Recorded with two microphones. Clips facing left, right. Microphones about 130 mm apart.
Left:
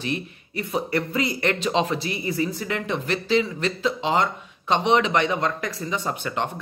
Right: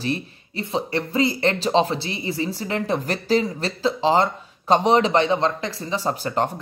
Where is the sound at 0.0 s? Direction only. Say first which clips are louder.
Right 2 dB; 30° right (ahead or behind).